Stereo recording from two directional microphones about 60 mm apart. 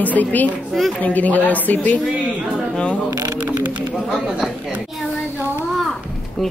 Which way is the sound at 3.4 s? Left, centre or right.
Right.